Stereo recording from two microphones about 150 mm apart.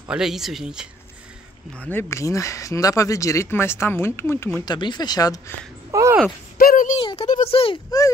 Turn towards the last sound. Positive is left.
turn(degrees=40)  # may be behind; listen again after turning